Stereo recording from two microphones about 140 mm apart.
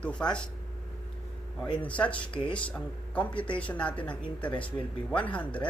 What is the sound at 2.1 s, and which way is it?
Speech, 35° left (ahead or behind).